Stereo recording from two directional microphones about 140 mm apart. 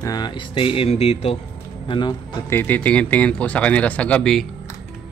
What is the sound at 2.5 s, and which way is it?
Speech, 10° left (ahead or behind).